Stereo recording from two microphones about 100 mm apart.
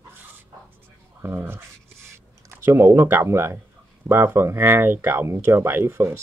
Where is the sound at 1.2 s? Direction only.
25° right (ahead or behind).